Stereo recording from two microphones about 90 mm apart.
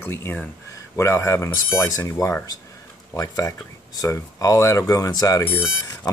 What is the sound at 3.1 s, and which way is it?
Speech, 40° left (ahead or behind).